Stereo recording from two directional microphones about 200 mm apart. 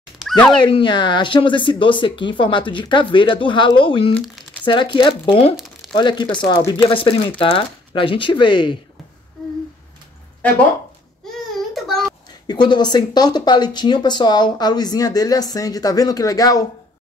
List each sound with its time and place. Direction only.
0.2 s a sound: centre (ahead or behind)
0.6 s speech: 25° left (ahead or behind)
5.6 s crumpling: centre (ahead or behind)
5.9 s speech: 20° left (ahead or behind)
11.2 s a sound: centre (ahead or behind)
12.4 s speech: 20° left (ahead or behind)